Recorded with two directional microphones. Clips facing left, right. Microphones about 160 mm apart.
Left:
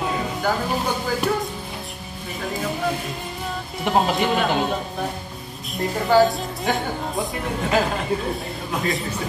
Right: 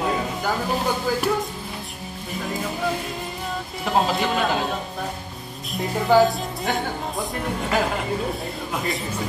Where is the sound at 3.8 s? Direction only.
Centre (ahead or behind).